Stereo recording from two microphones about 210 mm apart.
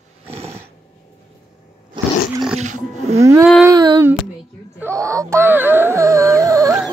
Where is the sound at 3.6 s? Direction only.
20° right (ahead or behind).